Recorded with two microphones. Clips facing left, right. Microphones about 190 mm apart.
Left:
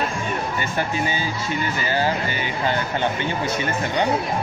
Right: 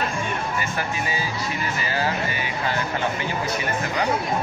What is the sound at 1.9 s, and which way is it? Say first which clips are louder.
Speech: left 4 dB; 30° left (ahead or behind).